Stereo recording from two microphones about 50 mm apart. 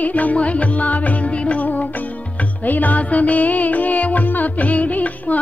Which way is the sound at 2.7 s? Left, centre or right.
Left.